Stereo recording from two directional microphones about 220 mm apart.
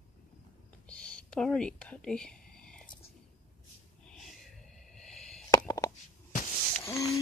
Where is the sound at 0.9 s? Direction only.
5° left (ahead or behind).